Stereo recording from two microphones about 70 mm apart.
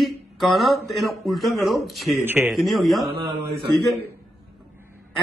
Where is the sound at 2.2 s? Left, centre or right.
Right.